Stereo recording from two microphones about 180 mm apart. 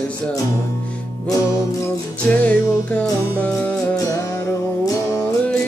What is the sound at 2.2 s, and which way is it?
Music, 5° left (ahead or behind).